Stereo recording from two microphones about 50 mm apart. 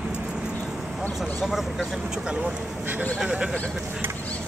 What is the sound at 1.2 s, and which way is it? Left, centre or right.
Speech, centre.